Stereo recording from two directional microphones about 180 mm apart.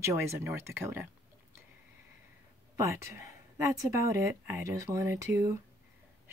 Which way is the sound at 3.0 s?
15° right (ahead or behind).